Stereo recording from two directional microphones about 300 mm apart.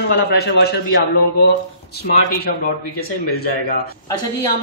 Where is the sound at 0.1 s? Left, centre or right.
Left.